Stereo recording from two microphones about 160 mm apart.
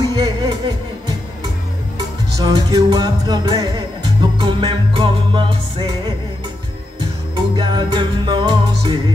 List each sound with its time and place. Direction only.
0.1 s music: 25° right (ahead or behind)
2.0 s music: 20° right (ahead or behind)
7.5 s music: 30° right (ahead or behind)